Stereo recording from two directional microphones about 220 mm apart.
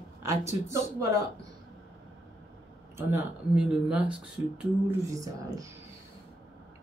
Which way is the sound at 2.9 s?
10° right (ahead or behind).